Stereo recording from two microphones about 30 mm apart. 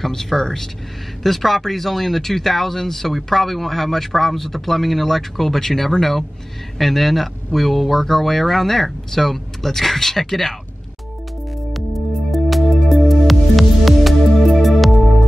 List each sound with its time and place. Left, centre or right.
0.0 s speech: centre
12.3 s music: centre